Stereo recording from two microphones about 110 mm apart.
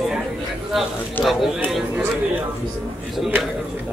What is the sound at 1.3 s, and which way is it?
Speech, centre (ahead or behind).